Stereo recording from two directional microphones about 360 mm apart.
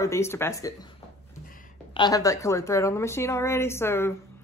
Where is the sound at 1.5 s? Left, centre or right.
Left.